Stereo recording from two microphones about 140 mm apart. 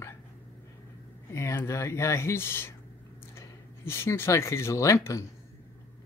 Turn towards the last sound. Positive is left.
turn(degrees=20)  # may be behind; listen again after turning